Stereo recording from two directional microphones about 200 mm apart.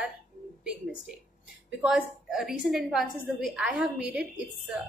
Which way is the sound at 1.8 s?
Centre (ahead or behind).